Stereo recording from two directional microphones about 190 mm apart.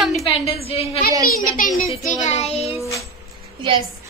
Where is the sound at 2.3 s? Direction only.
35° left (ahead or behind).